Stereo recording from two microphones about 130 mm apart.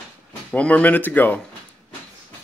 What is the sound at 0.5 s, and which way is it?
Speech, 10° left (ahead or behind).